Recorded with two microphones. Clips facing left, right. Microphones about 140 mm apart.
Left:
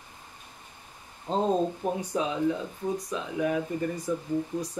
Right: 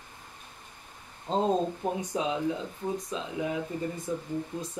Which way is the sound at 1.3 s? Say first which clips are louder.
Even; 15° left (ahead or behind).